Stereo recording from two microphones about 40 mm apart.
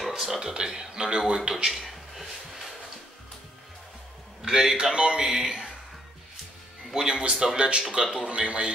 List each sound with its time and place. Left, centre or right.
0.1 s speech: centre
1.7 s a sound: centre
4.5 s speech: centre
7.1 s a man's voice: right